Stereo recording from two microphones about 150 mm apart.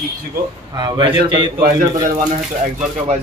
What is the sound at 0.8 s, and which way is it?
Speech, 35° right (ahead or behind).